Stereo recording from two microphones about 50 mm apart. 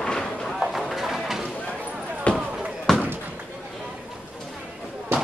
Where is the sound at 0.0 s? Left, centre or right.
Centre.